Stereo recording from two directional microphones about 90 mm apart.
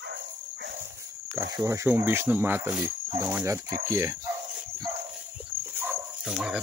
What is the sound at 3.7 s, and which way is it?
Speech, 35° right (ahead or behind).